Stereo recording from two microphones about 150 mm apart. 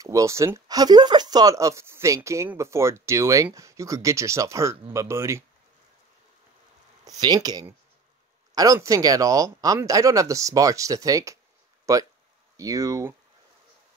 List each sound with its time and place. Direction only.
0.0 s speech: 20° right (ahead or behind)
7.1 s speech: 25° right (ahead or behind)